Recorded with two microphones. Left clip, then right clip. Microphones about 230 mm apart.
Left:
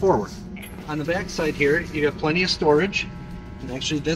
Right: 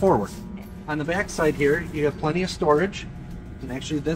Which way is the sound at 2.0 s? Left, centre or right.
Centre.